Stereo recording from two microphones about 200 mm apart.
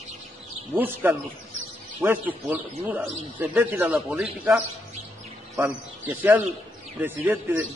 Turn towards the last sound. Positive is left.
turn(degrees=-10)  # may be behind; listen again after turning